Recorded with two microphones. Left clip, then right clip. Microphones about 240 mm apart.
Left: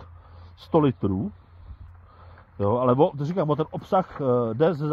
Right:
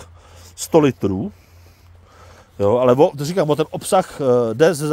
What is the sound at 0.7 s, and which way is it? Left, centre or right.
Speech, right.